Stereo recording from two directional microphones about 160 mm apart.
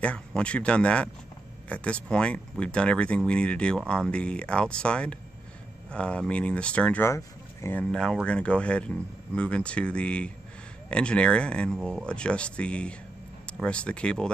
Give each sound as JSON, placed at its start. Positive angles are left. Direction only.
{"t": 0.0, "sound": "speech", "side_deg": 5}
{"t": 7.8, "sound": "speech", "side_deg": 5}